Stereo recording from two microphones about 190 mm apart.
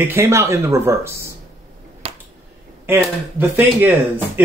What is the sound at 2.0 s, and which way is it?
Finger snapping, 30° right (ahead or behind).